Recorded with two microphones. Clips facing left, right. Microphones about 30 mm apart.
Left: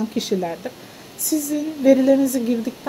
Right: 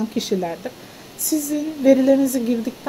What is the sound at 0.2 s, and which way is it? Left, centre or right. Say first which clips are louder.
Speech: even; right.